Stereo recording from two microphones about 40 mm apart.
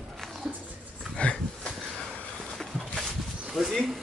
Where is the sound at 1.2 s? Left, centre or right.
Left.